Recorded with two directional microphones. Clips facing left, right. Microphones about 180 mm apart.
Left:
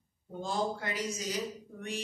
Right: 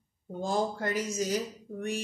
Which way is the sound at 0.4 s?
45° right (ahead or behind).